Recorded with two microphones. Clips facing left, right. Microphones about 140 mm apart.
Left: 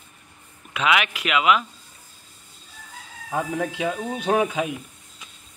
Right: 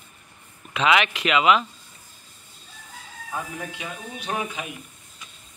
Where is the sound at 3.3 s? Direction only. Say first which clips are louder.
Left 7 dB; 80° left.